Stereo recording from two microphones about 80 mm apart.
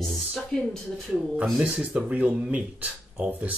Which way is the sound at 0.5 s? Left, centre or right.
Centre.